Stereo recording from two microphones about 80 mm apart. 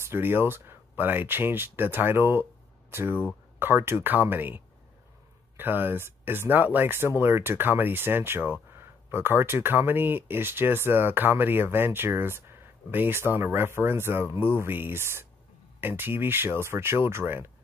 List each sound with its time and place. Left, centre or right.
0.0 s speech: right